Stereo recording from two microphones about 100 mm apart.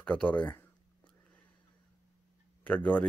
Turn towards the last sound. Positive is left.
turn(degrees=15)  # may be behind; listen again after turning